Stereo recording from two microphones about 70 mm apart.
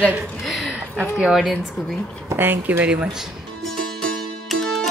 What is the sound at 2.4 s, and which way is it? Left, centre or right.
Speech, right.